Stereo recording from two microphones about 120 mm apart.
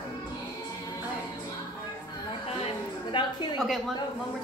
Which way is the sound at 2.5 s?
50° left (ahead or behind).